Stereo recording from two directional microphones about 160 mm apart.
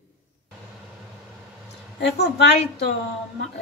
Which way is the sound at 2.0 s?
90° left.